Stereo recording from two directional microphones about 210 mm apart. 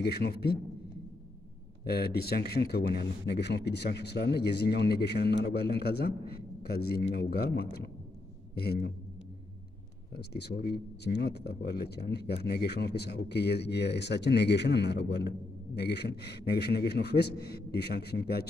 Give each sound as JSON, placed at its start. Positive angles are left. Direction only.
{"t": 0.0, "sound": "speech", "side_deg": 50}
{"t": 1.9, "sound": "speech", "side_deg": 50}
{"t": 10.1, "sound": "speech", "side_deg": 50}